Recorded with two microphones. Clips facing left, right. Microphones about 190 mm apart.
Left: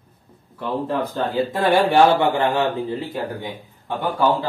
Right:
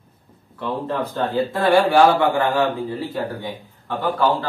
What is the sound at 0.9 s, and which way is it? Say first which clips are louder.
A man's voice: right 2 dB; 15° left (ahead or behind).